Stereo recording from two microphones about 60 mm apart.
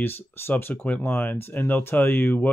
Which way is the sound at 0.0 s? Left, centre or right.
Left.